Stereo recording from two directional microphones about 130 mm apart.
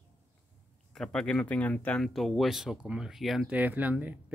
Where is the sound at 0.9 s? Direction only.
5° left (ahead or behind).